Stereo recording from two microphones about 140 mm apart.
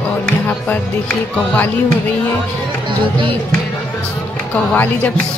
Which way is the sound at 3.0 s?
40° right (ahead or behind).